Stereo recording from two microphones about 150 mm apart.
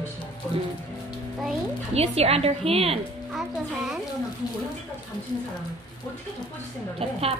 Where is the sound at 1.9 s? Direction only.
45° right (ahead or behind).